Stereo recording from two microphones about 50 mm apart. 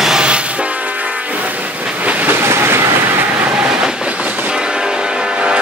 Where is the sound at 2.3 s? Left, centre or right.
Right.